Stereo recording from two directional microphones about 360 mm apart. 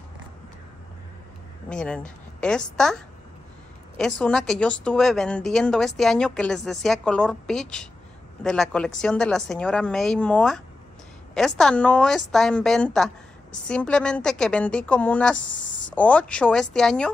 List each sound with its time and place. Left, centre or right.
1.7 s speech: centre
3.9 s speech: centre
15.3 s speech: left
15.9 s speech: centre